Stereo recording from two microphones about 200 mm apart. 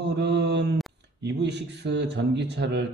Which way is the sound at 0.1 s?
55° right (ahead or behind).